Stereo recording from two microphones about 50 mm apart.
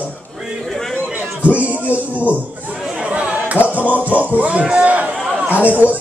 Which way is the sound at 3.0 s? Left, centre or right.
Right.